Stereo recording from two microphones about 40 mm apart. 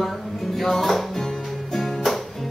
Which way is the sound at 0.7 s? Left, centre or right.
Centre.